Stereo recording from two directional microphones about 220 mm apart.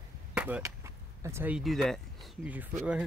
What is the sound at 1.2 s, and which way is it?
Speech, 10° right (ahead or behind).